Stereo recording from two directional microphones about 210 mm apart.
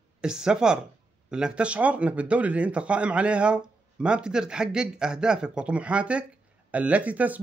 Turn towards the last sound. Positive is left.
turn(degrees=-5)  # may be behind; listen again after turning